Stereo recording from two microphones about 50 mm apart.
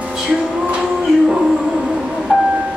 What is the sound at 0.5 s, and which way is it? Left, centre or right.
Music, right.